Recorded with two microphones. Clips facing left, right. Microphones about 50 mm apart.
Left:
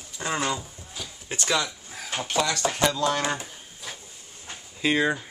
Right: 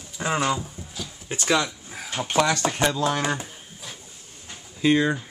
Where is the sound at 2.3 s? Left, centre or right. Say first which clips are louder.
Right 5 dB; right.